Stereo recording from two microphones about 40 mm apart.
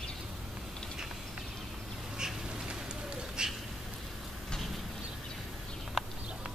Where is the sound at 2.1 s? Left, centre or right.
Centre.